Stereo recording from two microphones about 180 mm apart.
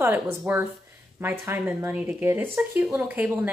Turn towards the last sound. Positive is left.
turn(degrees=-10)  # may be behind; listen again after turning